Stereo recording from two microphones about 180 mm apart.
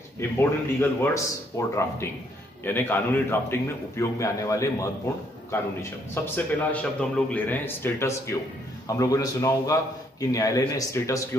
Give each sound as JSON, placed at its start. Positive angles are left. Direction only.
{"t": 0.4, "sound": "a man's voice", "side_deg": 15}